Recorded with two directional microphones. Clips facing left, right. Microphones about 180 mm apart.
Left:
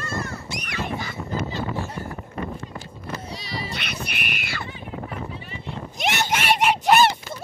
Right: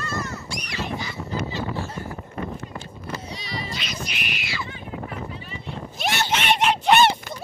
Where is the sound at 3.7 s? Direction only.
60° left (ahead or behind).